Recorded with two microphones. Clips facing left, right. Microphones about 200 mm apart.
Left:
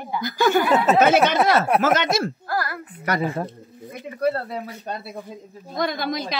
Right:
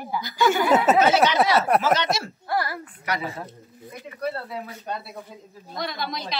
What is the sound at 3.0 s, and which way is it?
A woman's voice, 50° left (ahead or behind).